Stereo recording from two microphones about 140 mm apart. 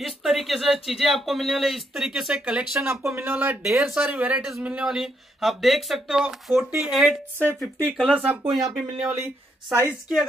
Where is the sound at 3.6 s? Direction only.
5° right (ahead or behind).